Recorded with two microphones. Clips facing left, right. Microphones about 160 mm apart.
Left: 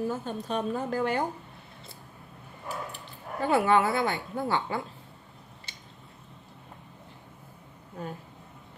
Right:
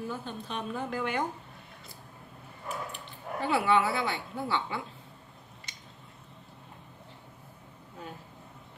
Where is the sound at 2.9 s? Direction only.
45° left (ahead or behind).